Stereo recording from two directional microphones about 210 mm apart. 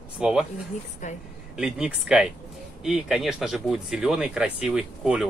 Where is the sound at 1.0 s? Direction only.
35° left (ahead or behind).